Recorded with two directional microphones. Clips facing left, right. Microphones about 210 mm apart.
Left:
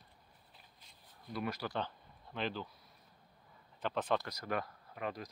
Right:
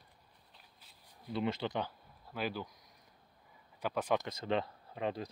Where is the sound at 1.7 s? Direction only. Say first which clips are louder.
Right 2 dB; 5° right (ahead or behind).